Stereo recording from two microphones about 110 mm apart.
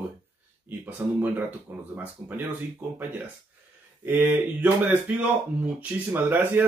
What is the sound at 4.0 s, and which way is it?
Speech, 20° right (ahead or behind).